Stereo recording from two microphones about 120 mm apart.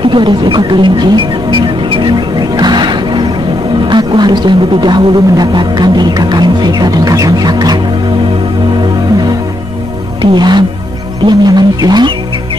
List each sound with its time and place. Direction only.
0.1 s speech: 40° right (ahead or behind)
1.6 s music: 40° right (ahead or behind)
3.8 s speech: 40° right (ahead or behind)
10.2 s speech: 40° right (ahead or behind)